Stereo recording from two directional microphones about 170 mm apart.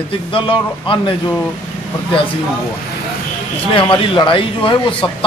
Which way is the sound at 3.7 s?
30° left (ahead or behind).